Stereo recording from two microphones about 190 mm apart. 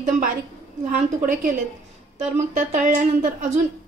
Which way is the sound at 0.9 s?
40° right (ahead or behind).